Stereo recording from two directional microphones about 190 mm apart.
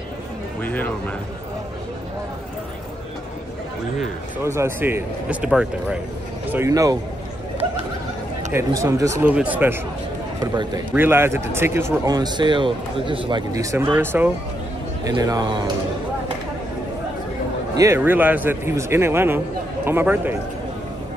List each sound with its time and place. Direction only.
0.6 s speech: 10° left (ahead or behind)
4.4 s speech: 15° right (ahead or behind)
6.5 s speech: 15° right (ahead or behind)
8.5 s speech: 15° right (ahead or behind)
10.4 s a man's voice: 20° right (ahead or behind)
10.9 s a man's voice: 10° right (ahead or behind)
17.7 s speech: 15° right (ahead or behind)